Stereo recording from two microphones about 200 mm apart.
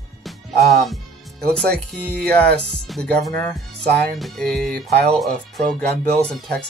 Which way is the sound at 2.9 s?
Centre (ahead or behind).